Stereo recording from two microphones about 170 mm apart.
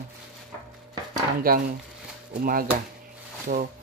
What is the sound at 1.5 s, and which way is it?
Speech, 60° right (ahead or behind).